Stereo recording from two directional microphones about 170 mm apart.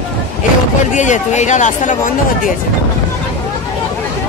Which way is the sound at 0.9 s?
45° left (ahead or behind).